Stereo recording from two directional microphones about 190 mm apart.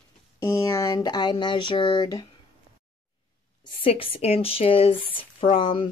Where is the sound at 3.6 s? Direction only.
30° left (ahead or behind).